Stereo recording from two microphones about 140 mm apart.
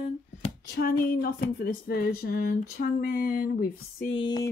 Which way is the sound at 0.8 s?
90° left.